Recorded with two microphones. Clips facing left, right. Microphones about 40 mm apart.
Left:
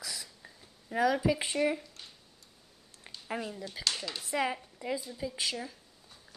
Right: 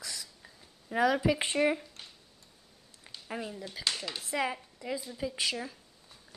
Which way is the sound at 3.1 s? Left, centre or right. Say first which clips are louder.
Even; left.